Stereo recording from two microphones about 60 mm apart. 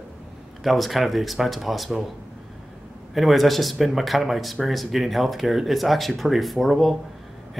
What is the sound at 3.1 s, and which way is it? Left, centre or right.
Speech, centre.